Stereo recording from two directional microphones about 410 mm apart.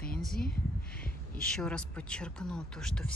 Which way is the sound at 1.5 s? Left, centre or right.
Centre.